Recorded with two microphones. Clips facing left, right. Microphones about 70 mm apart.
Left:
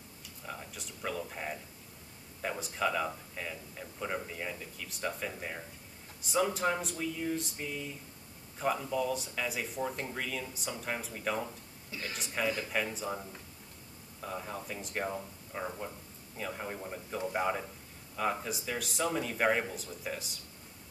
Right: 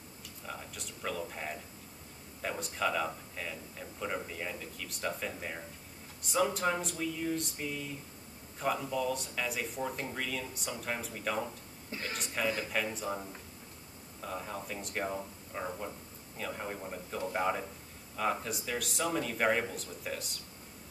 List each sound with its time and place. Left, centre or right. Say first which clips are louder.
0.5 s speech: even; centre